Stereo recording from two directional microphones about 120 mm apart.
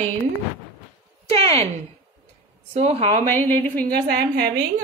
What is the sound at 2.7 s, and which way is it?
Speech, 60° right (ahead or behind).